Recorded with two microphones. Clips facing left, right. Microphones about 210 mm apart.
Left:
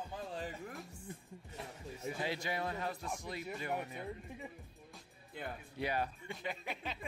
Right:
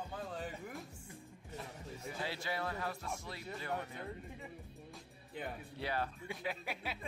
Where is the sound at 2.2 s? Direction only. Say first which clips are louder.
Left 1 dB; 15° left (ahead or behind).